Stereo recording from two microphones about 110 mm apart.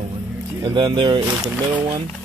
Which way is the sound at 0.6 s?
40° right (ahead or behind).